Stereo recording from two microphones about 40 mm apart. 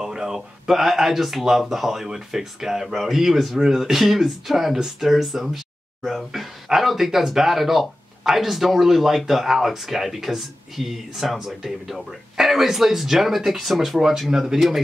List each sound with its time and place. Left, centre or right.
0.0 s speech: centre